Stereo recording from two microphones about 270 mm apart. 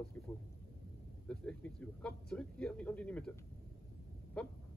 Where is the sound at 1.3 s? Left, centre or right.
Centre.